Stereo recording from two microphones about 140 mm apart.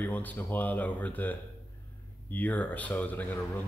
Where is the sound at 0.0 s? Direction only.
10° left (ahead or behind).